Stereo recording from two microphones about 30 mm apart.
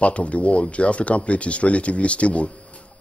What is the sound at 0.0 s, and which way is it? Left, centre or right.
Speech, left.